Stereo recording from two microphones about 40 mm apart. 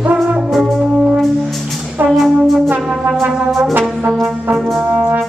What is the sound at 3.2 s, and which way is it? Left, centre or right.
Brass instrument, right.